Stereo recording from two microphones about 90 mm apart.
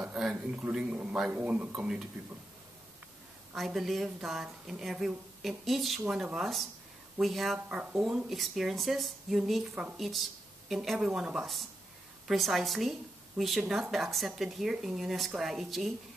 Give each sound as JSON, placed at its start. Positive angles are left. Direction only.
{"t": 0.2, "sound": "a sound", "side_deg": -5}
{"t": 0.6, "sound": "speech", "side_deg": -10}
{"t": 3.5, "sound": "speech", "side_deg": 0}
{"t": 7.5, "sound": "speech", "side_deg": -15}
{"t": 8.0, "sound": "speech", "side_deg": -5}